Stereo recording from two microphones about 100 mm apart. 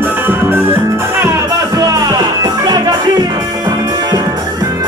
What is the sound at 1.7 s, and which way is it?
Music, 40° right (ahead or behind).